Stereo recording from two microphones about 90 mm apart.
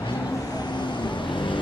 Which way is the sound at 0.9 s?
60° left (ahead or behind).